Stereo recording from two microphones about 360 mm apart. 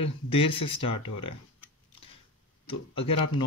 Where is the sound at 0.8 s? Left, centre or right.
Left.